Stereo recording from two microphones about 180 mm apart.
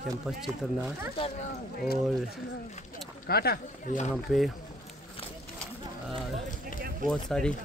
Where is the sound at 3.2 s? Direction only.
60° left (ahead or behind).